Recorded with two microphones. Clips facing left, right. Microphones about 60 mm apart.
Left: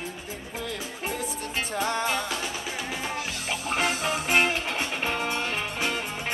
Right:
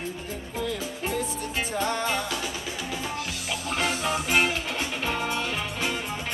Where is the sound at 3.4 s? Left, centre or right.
Centre.